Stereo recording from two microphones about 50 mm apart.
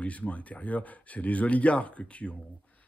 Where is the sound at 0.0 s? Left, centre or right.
Left.